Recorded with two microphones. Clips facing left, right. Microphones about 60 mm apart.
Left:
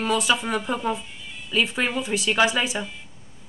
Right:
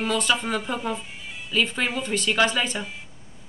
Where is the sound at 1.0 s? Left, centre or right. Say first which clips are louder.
Right 1 dB; centre.